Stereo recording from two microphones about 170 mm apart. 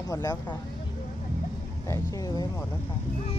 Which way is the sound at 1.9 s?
20° left (ahead or behind).